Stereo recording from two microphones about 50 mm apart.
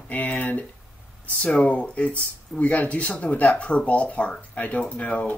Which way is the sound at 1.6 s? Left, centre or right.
Left.